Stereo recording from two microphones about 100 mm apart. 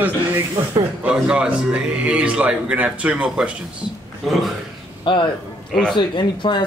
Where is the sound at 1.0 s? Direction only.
10° right (ahead or behind).